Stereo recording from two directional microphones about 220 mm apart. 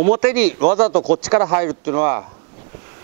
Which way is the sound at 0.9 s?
40° right (ahead or behind).